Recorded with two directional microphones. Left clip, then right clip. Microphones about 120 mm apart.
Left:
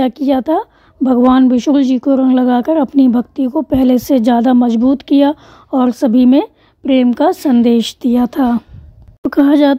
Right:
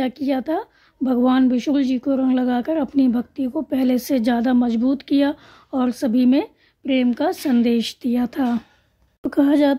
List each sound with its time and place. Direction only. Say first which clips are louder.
0.0 s a woman's voice: left 8 dB; 50° left (ahead or behind)